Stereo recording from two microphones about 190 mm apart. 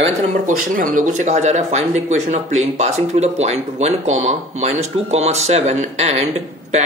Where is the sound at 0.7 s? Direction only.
45° right (ahead or behind).